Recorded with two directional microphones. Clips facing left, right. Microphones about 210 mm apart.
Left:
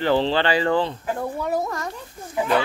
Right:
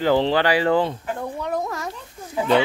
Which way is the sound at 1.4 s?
5° left (ahead or behind).